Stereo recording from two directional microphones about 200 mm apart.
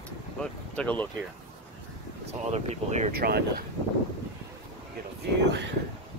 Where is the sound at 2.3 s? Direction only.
30° right (ahead or behind).